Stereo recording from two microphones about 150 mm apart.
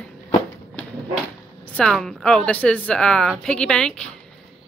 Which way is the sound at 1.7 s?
5° left (ahead or behind).